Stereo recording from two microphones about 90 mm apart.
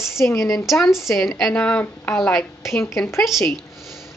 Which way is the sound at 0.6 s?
Centre (ahead or behind).